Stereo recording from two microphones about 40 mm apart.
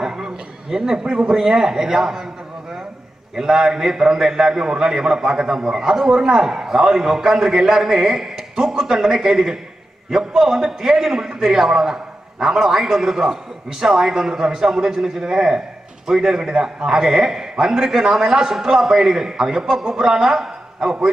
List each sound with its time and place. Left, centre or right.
0.0 s a sound: centre
1.4 s a man's voice: centre
3.3 s a man's voice: centre